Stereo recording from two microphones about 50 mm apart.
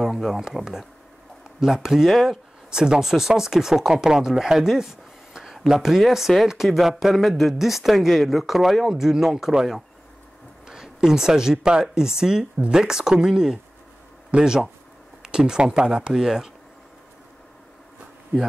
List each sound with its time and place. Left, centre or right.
0.0 s speech: centre